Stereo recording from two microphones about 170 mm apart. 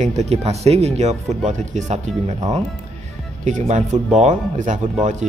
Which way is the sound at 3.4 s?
45° right (ahead or behind).